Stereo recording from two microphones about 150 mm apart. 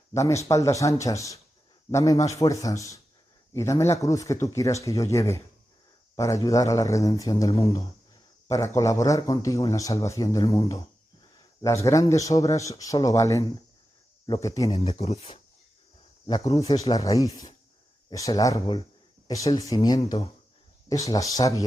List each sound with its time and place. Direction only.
0.1 s a man's voice: 20° left (ahead or behind)
14.9 s speech: 45° left (ahead or behind)
16.3 s a man's voice: 25° left (ahead or behind)